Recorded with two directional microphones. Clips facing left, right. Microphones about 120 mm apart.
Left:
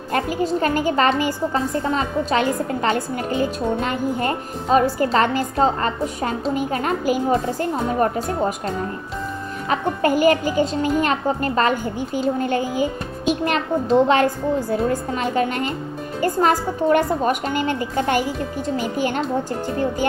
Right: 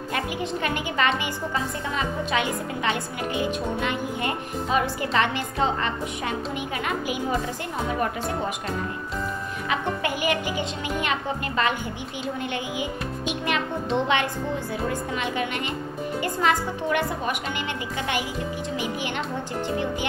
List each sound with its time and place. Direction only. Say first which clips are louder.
0.1 s a woman's voice: left 8 dB; 40° left (ahead or behind)